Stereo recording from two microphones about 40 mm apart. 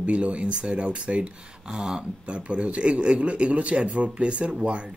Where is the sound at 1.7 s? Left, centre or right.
Centre.